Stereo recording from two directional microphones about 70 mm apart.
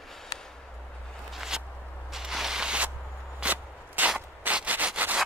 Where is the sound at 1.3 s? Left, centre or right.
Centre.